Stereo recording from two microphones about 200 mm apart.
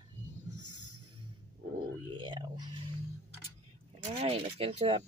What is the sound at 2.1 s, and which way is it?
Speech, 25° right (ahead or behind).